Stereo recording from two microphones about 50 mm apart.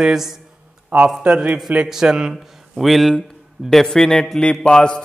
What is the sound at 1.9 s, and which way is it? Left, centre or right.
Speech, centre.